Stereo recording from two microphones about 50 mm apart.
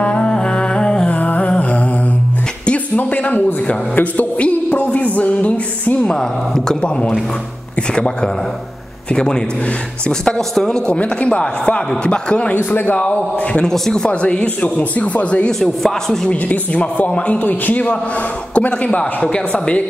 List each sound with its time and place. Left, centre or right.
0.0 s music: centre
1.1 s music: left
3.0 s a sound: left
3.6 s music: left
6.0 s speech: centre
7.9 s speech: centre
13.7 s speech: centre; by 15.4 s left
15.6 s speech: centre
16.4 s a woman's voice: left